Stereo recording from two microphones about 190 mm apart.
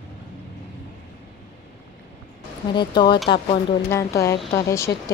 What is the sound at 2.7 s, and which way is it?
Speech, 25° left (ahead or behind).